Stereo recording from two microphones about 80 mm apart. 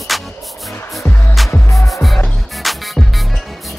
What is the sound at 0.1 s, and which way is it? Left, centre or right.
Music, centre.